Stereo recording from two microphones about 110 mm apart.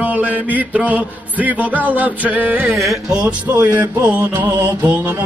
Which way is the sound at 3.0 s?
5° right (ahead or behind).